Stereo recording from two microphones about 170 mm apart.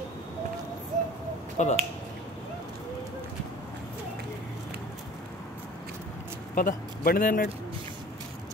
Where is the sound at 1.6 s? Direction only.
45° left (ahead or behind).